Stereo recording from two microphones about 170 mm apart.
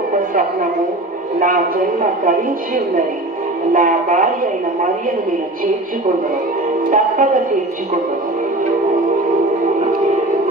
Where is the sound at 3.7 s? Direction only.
50° right (ahead or behind).